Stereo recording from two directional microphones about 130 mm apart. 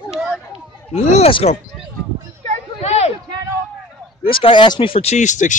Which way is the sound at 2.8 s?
55° left (ahead or behind).